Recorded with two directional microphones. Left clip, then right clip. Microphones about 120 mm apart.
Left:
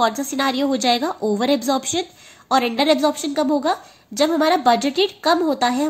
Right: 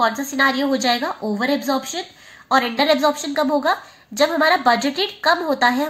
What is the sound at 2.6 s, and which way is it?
Speech, 70° left (ahead or behind).